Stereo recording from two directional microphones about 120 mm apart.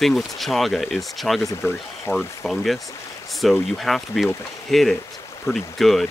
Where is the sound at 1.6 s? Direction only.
20° left (ahead or behind).